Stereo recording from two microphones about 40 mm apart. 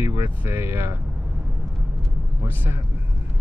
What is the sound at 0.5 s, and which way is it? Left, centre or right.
Speech, right.